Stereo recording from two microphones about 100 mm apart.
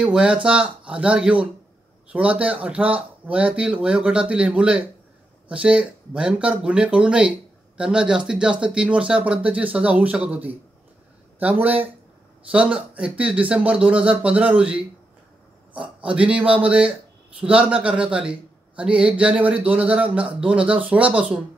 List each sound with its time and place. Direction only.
0.0 s speech: 10° right (ahead or behind)
11.6 s speech: 15° right (ahead or behind)
16.0 s speech: 10° right (ahead or behind)